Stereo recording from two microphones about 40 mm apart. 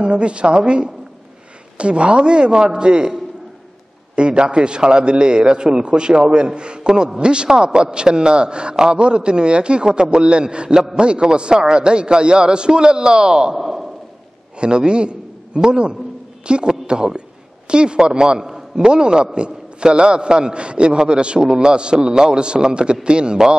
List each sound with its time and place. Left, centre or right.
0.0 s a man's voice: right
13.6 s a sound: centre
14.6 s a man's voice: right